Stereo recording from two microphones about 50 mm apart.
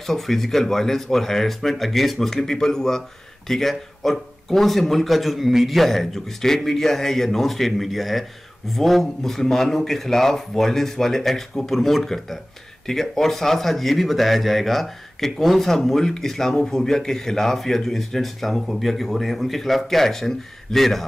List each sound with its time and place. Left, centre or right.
0.0 s speech: centre